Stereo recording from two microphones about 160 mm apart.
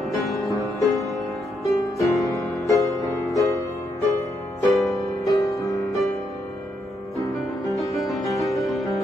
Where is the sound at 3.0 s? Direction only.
Centre (ahead or behind).